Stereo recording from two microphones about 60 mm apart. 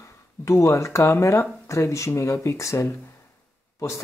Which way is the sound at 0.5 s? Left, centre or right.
Left.